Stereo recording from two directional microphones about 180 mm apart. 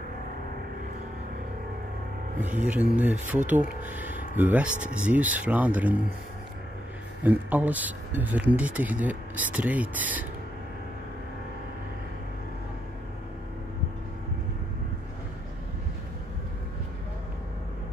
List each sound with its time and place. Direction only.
2.4 s speech: 10° right (ahead or behind)
7.2 s speech: 10° right (ahead or behind)